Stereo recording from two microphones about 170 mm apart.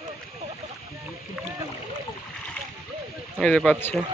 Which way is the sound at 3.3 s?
5° left (ahead or behind).